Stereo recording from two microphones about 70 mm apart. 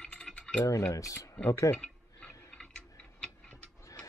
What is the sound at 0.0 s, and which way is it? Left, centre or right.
Stir, centre.